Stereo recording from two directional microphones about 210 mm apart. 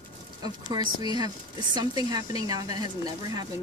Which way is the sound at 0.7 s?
20° right (ahead or behind).